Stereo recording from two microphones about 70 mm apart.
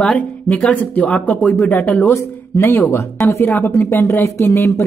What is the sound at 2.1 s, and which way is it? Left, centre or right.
A woman's voice, left.